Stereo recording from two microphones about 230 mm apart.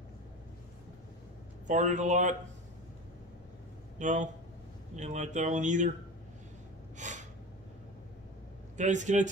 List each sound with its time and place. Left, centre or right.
1.7 s speech: right
4.0 s speech: right
7.0 s gasp: right
8.7 s speech: right